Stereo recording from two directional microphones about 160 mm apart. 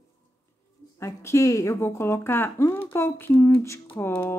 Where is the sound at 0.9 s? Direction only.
15° left (ahead or behind).